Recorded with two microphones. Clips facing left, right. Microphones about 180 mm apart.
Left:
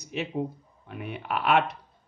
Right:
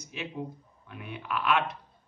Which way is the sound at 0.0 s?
65° left (ahead or behind).